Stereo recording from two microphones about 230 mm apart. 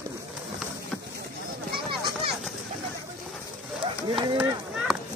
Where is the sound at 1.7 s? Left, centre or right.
Right.